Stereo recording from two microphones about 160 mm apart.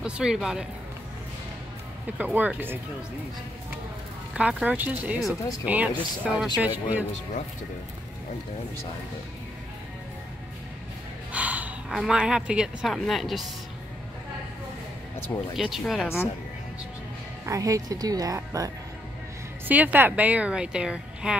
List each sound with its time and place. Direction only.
0.0 s speech: 5° right (ahead or behind)
2.1 s a woman's voice: 10° right (ahead or behind)
4.3 s a woman's voice: 5° right (ahead or behind)
11.3 s a woman's voice: 10° right (ahead or behind)
15.5 s speech: centre (ahead or behind)
17.5 s speech: 20° right (ahead or behind)
19.7 s a woman's voice: 10° right (ahead or behind)